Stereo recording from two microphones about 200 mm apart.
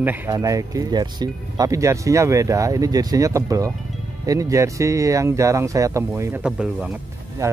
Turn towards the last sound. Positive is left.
turn(degrees=-15)  # may be behind; listen again after turning